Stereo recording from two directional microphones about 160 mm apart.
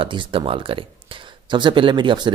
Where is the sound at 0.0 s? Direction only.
30° right (ahead or behind).